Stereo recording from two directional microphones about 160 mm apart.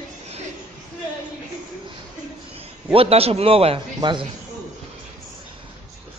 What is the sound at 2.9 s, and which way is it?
A man's voice, 35° right (ahead or behind).